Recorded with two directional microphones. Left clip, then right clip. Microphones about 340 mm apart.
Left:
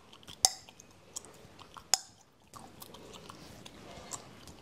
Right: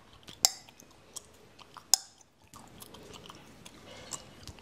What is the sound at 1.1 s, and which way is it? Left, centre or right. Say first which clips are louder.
Chewing: left 1 dB; centre.